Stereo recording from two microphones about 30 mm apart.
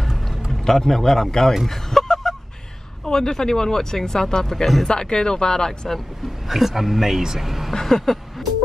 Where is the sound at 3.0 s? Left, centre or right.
Centre.